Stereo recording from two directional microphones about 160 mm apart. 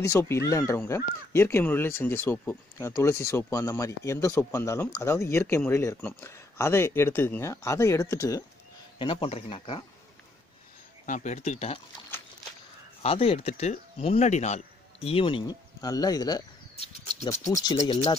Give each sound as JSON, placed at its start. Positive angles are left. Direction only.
{"t": 0.0, "sound": "speech", "side_deg": 15}
{"t": 8.9, "sound": "speech", "side_deg": 30}
{"t": 11.1, "sound": "speech", "side_deg": 50}
{"t": 13.0, "sound": "speech", "side_deg": 40}
{"t": 15.0, "sound": "speech", "side_deg": 35}
{"t": 16.7, "sound": "a sound", "side_deg": 40}